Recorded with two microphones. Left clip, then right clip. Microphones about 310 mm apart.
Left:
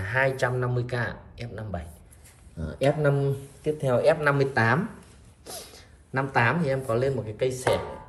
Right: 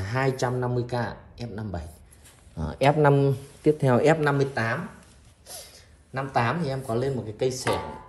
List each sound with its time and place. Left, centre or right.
0.0 s a sound: centre
0.4 s a man's voice: centre
2.6 s speech: centre
3.0 s speech: centre
4.5 s speech: centre
5.4 s a sound: centre
6.1 s a man's voice: centre